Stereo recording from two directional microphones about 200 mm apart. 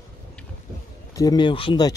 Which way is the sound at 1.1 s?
20° left (ahead or behind).